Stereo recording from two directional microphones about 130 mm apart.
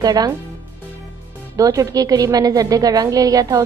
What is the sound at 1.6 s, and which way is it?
A woman's voice, 25° right (ahead or behind).